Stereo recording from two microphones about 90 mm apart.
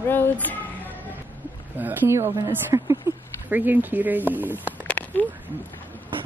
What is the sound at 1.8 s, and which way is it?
A woman's voice, 20° right (ahead or behind).